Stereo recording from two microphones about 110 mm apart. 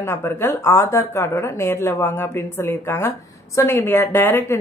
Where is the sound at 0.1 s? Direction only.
20° left (ahead or behind).